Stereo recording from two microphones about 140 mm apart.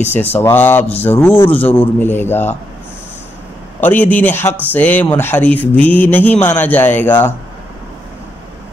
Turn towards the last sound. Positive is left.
turn(degrees=15)  # may be behind; listen again after turning